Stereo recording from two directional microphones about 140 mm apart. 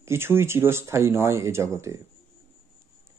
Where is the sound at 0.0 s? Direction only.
20° right (ahead or behind).